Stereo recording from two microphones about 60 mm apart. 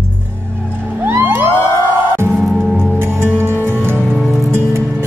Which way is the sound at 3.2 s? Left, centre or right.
Right.